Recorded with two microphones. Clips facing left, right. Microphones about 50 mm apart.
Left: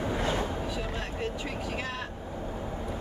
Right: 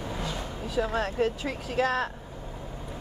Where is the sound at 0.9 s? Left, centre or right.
Right.